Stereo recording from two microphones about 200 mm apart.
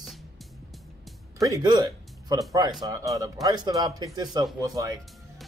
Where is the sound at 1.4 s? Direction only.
20° right (ahead or behind).